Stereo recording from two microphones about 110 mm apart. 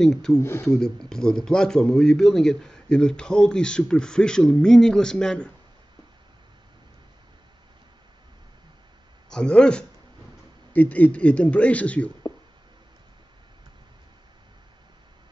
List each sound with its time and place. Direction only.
0.0 s speech: 5° left (ahead or behind)
0.4 s speech: 20° left (ahead or behind)
0.7 s a man's voice: 5° left (ahead or behind)
9.3 s a man's voice: 10° left (ahead or behind)